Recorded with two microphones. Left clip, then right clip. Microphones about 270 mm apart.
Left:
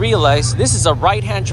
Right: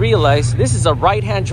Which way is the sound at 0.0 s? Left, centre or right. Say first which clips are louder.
Even; centre.